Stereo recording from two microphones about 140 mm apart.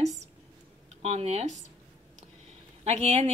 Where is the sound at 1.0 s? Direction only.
50° right (ahead or behind).